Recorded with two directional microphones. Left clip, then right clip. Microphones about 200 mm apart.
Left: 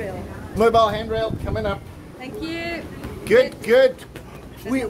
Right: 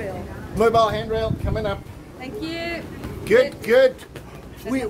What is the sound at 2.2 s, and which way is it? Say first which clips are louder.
Speech: even; centre (ahead or behind).